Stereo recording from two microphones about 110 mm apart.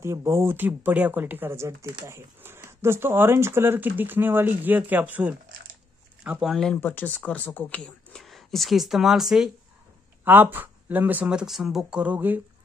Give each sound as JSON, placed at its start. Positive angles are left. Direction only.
{"t": 0.0, "sound": "speech", "side_deg": -25}
{"t": 6.4, "sound": "speech", "side_deg": 5}
{"t": 6.8, "sound": "speech", "side_deg": 15}
{"t": 10.2, "sound": "speech", "side_deg": -20}